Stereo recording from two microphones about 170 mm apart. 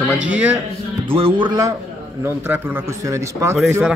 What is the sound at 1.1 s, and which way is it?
Speech, 30° right (ahead or behind).